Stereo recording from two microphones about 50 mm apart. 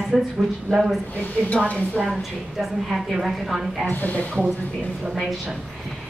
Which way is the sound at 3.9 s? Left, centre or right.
Left.